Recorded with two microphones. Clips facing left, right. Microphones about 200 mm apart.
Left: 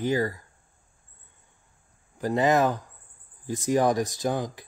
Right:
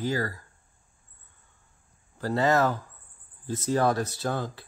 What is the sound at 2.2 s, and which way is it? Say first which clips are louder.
Speech: left 2 dB; 15° left (ahead or behind).